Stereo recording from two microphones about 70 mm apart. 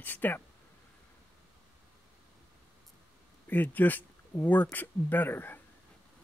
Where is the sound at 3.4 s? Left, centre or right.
Left.